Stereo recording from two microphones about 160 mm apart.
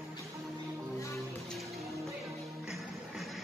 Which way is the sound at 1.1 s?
Centre (ahead or behind).